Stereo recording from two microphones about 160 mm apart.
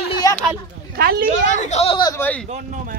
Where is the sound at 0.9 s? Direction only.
75° right (ahead or behind).